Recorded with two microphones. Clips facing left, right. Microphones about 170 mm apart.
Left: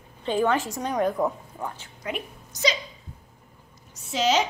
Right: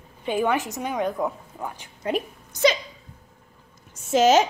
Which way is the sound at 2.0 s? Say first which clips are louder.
Right 7 dB; 30° right (ahead or behind).